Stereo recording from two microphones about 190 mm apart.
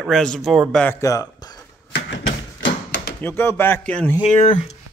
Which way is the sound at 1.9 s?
70° left (ahead or behind).